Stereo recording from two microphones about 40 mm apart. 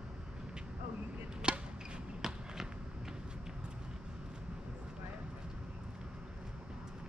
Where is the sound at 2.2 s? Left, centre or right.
Centre.